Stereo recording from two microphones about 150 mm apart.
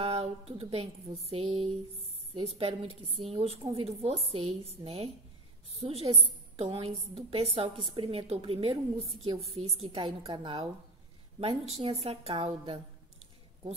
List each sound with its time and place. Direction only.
0.0 s a woman's voice: 40° right (ahead or behind)